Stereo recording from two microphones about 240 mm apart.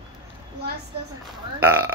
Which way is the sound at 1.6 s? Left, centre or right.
Centre.